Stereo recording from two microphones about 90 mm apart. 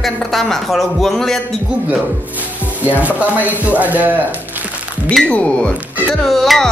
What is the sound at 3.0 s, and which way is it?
Speech, 15° right (ahead or behind).